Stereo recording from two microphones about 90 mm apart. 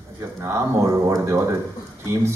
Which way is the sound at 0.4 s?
30° right (ahead or behind).